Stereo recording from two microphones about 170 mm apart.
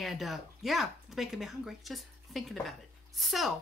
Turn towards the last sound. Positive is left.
turn(degrees=0)  # may be behind; listen again after turning